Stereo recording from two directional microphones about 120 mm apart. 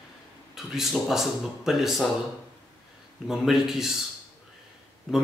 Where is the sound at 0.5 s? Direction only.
5° right (ahead or behind).